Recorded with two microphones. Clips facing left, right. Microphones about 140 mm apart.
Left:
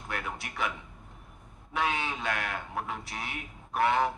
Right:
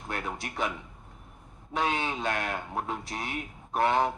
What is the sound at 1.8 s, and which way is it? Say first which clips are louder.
Speech: right 2 dB; 30° right (ahead or behind).